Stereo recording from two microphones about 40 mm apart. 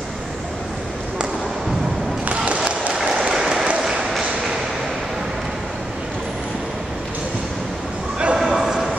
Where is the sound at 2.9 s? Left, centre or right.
Centre.